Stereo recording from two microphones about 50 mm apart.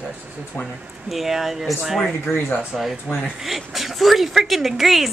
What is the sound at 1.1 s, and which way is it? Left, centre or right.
Speech, centre.